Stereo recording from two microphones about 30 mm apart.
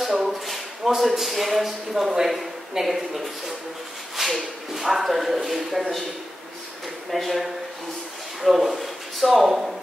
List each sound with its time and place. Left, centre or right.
0.0 s a sound: centre
0.8 s speech: centre
2.0 s speech: centre
4.2 s speech: centre
7.1 s speech: centre